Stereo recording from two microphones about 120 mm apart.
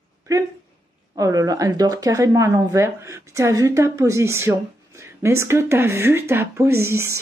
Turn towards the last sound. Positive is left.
turn(degrees=-25)  # may be behind; listen again after turning